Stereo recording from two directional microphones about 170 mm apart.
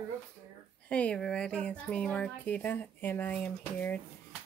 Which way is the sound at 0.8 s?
5° left (ahead or behind).